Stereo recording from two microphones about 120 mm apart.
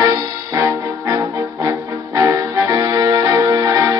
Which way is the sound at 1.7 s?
30° right (ahead or behind).